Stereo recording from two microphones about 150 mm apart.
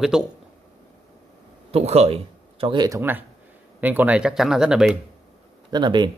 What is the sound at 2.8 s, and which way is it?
Speech, 15° right (ahead or behind).